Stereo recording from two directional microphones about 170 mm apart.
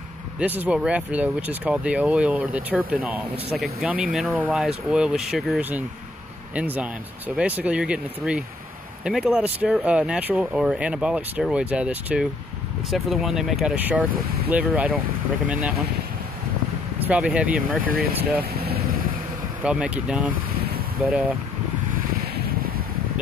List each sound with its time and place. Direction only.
0.4 s speech: 10° right (ahead or behind)
17.0 s speech: 5° right (ahead or behind)
18.4 s vehicle: 65° right (ahead or behind)
19.6 s speech: 5° right (ahead or behind)
22.2 s a sound: 60° right (ahead or behind)